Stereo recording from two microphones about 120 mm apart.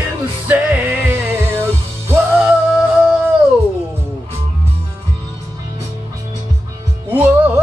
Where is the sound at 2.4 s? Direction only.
10° right (ahead or behind).